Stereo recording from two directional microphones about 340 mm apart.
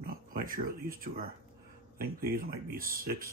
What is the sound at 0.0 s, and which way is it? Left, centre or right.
Speech, right.